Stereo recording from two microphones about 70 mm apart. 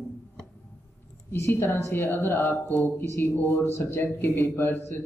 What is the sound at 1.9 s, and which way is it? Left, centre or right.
A man's voice, left.